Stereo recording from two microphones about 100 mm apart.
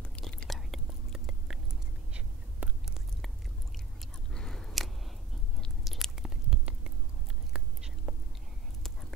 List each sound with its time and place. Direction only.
0.2 s whispering: centre (ahead or behind)
2.6 s chewing: 15° right (ahead or behind)
4.0 s a sound: 5° left (ahead or behind)
5.6 s biting: centre (ahead or behind)
7.5 s whispering: 10° right (ahead or behind)